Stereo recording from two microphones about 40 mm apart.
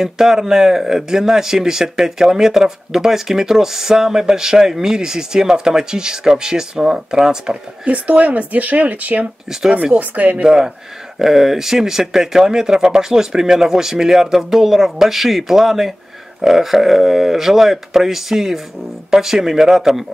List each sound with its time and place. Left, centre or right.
0.0 s speech: centre
7.8 s speech: right
9.2 s speech: centre
9.9 s speech: right
10.4 s speech: centre